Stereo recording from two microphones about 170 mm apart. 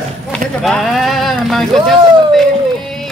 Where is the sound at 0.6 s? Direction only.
Centre (ahead or behind).